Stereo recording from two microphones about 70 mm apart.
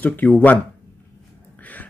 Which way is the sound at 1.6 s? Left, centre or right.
Left.